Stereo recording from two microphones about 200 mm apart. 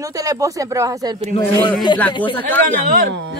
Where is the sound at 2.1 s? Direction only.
25° left (ahead or behind).